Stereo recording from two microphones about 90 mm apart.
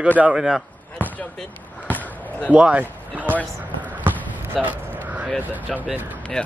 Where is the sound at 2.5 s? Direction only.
15° right (ahead or behind).